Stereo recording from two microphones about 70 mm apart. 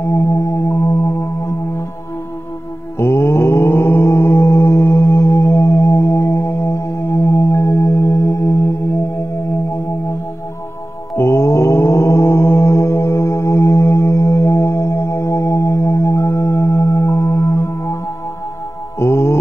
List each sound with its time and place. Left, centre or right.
0.0 s music: left
3.0 s mantra: left
4.0 s music: left
7.2 s singing bowl: left
11.1 s mantra: left
16.8 s music: left
18.9 s music: left